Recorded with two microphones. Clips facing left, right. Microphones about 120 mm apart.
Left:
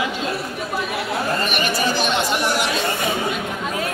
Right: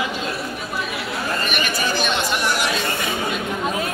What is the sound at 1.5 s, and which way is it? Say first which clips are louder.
Speech: left 2 dB; 30° left (ahead or behind).